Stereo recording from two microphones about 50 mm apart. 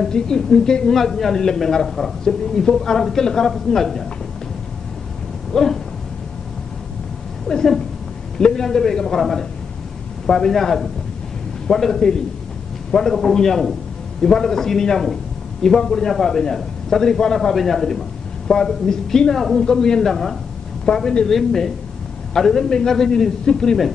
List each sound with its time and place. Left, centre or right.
0.0 s a woman's voice: centre
5.5 s a sound: centre
7.4 s a woman's voice: centre